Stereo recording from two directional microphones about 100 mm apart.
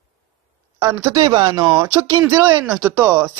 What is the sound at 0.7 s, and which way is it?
Speech, 30° right (ahead or behind).